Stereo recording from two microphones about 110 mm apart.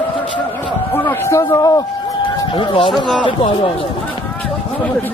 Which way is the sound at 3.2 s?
50° left (ahead or behind).